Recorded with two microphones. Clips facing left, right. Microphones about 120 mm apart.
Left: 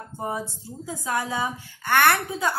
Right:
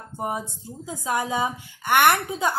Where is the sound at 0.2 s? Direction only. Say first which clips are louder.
Right 1 dB; 15° right (ahead or behind).